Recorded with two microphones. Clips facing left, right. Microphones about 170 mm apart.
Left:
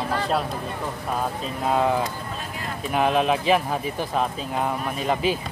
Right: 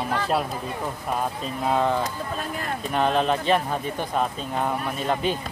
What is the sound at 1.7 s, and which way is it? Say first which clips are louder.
Speech: left 1 dB; 5° left (ahead or behind).